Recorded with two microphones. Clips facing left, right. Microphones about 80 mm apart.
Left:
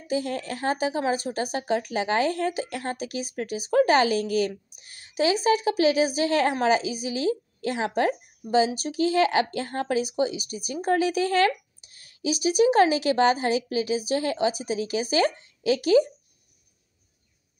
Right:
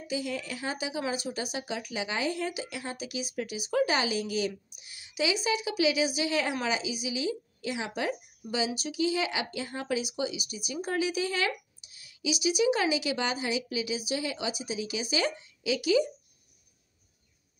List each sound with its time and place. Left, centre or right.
0.1 s speech: left